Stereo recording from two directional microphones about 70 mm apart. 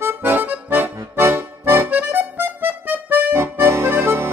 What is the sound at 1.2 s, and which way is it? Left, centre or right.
Music, right.